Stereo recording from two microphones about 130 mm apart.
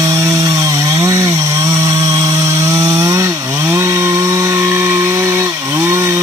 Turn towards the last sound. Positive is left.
turn(degrees=-20)  # may be behind; listen again after turning